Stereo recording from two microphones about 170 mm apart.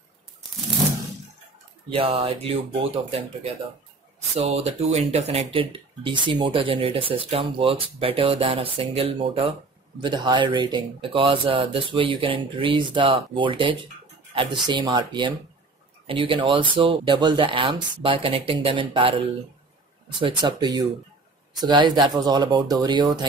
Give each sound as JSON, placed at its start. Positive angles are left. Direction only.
{"t": 1.9, "sound": "speech", "side_deg": -30}
{"t": 4.5, "sound": "speech", "side_deg": -35}